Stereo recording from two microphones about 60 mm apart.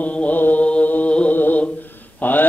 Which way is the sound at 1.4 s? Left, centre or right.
Left.